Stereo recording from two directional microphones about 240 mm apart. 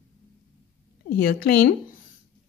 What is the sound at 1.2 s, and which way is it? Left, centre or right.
Speech, left.